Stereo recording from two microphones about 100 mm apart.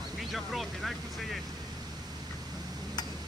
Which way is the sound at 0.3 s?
Centre (ahead or behind).